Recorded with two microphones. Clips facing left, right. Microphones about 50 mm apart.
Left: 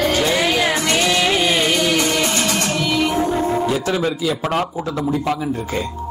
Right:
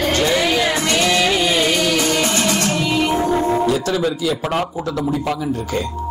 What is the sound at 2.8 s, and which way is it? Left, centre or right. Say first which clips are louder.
Music: right 1 dB; right.